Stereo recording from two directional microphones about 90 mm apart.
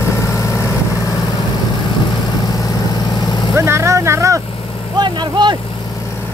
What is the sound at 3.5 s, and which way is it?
Vehicle, 30° right (ahead or behind).